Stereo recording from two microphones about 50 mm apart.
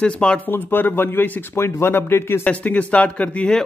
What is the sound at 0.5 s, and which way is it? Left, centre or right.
Speech, left.